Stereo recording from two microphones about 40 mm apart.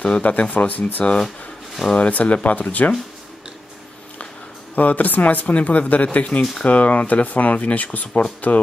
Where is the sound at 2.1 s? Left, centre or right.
Left.